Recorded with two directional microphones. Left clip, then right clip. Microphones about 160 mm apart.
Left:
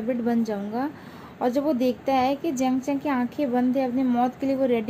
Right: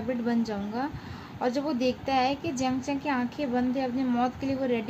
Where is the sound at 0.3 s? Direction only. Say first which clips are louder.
Left 4 dB; 20° left (ahead or behind).